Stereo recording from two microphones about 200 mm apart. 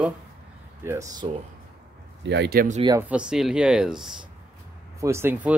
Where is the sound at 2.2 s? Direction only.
60° right (ahead or behind).